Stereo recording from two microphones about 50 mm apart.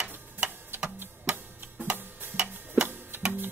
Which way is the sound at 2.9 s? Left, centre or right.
Right.